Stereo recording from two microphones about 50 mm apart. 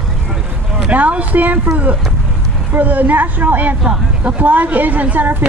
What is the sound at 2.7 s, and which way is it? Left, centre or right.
A woman's voice, right.